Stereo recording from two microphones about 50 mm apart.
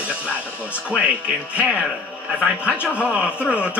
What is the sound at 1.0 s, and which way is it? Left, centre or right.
Speech, right.